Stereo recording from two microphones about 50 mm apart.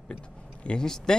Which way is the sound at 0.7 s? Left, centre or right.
Centre.